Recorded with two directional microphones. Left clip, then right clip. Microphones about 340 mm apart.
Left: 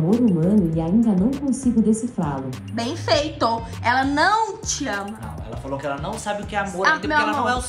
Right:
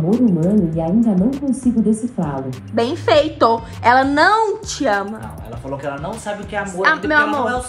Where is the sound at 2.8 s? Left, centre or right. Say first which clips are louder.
Right 6 dB; centre.